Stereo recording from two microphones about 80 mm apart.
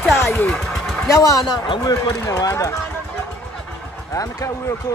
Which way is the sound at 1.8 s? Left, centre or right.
Left.